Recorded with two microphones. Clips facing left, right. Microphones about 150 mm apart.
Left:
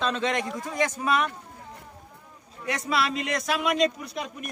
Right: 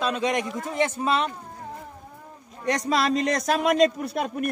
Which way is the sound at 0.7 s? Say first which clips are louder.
Right 2 dB; 25° right (ahead or behind).